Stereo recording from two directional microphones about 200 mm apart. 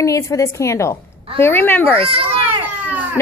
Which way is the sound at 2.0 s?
30° right (ahead or behind).